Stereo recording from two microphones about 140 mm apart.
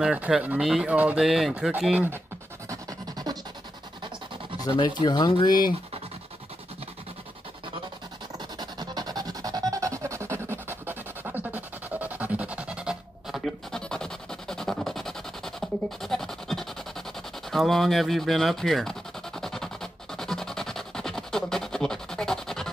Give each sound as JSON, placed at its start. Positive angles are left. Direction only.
{"t": 0.0, "sound": "speech", "side_deg": -5}
{"t": 2.7, "sound": "music", "side_deg": -25}
{"t": 4.6, "sound": "speech", "side_deg": 35}
{"t": 8.5, "sound": "music", "side_deg": -30}
{"t": 17.5, "sound": "scratch", "side_deg": 0}